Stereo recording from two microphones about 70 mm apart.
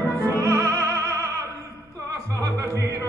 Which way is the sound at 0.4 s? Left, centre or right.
Right.